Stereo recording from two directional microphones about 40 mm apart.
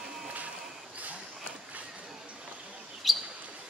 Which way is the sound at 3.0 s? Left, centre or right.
Centre.